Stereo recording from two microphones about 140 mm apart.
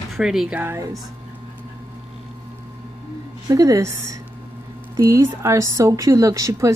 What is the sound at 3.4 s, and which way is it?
A woman's voice, 25° right (ahead or behind).